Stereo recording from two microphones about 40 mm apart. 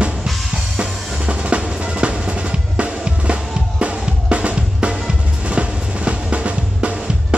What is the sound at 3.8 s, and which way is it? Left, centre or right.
Drum kit, right.